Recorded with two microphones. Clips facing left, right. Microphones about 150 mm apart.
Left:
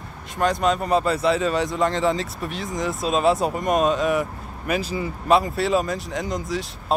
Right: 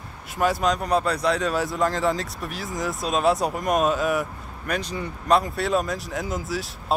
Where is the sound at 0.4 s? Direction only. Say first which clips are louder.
Left 1 dB; 5° right (ahead or behind).